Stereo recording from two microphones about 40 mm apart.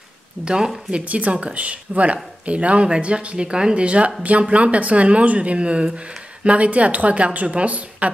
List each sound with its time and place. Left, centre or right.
0.9 s a woman's voice: right